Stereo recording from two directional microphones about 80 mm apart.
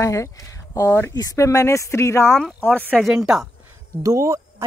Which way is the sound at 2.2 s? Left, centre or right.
Centre.